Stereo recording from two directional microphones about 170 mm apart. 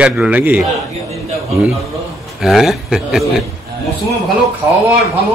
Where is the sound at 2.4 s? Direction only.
Centre (ahead or behind).